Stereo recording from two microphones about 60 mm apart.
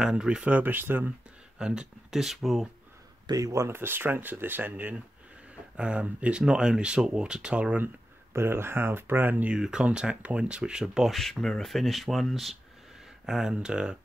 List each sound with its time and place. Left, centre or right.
0.0 s speech: centre
0.5 s speech: right
1.6 s speech: centre
3.3 s speech: right
3.6 s speech: right
5.8 s speech: centre
7.8 s speech: right
9.5 s speech: centre
11.1 s speech: centre
13.2 s speech: centre